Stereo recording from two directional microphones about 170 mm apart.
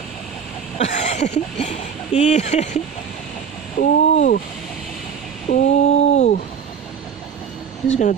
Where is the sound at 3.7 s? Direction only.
50° left (ahead or behind).